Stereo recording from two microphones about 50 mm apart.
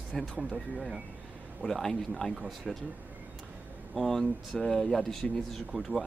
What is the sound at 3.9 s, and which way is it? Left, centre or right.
Speech, centre.